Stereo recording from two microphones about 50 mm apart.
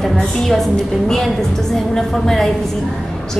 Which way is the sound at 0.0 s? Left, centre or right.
Centre.